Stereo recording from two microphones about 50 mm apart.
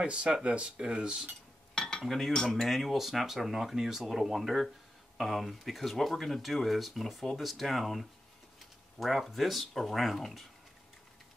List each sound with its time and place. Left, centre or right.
0.0 s speech: right
1.8 s cutlery: centre
2.0 s speech: centre